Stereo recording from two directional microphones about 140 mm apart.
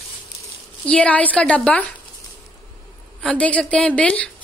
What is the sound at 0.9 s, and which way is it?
A woman's voice, 10° left (ahead or behind).